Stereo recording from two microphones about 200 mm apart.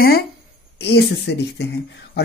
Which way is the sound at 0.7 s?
55° left (ahead or behind).